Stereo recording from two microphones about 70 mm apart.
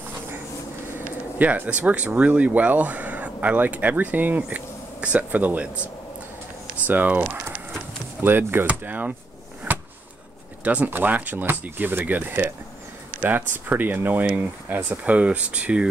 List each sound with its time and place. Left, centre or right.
0.9 s speech: right
6.9 s speech: right
9.7 s a sound: right
10.6 s speech: right